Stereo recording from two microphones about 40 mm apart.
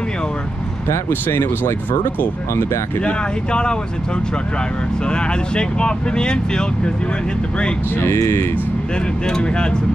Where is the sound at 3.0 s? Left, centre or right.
Left.